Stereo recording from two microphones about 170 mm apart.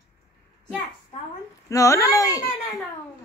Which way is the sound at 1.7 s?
20° left (ahead or behind).